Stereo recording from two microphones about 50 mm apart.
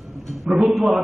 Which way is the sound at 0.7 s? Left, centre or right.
Centre.